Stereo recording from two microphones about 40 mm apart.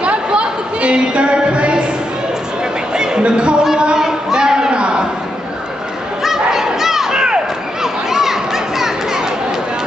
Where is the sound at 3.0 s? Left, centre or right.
Right.